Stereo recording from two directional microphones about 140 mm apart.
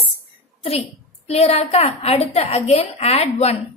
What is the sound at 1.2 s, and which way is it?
A woman's voice, 50° left (ahead or behind).